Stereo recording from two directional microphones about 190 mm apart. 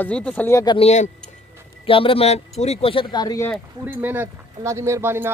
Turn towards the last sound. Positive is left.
turn(degrees=-10)  # may be behind; listen again after turning